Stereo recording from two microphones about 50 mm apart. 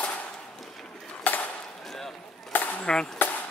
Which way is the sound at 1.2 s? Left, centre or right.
Left.